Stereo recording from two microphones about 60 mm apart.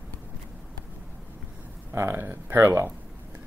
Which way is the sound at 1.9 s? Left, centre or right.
Right.